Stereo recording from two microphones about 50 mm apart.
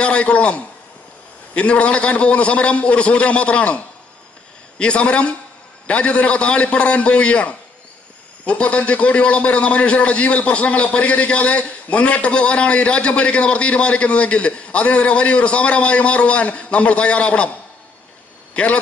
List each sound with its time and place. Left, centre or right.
0.0 s a man's voice: left
18.5 s speech: left